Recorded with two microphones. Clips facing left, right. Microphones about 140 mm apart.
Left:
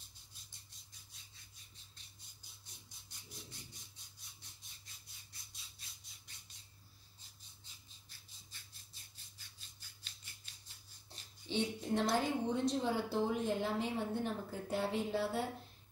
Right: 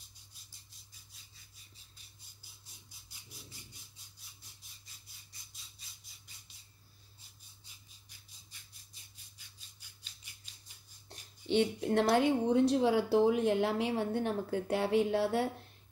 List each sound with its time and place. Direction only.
0.5 s squawk: centre (ahead or behind)
2.6 s a sound: 5° right (ahead or behind)
11.1 s a woman's voice: 65° right (ahead or behind)